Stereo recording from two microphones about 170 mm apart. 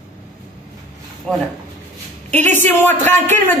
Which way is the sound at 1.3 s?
Centre (ahead or behind).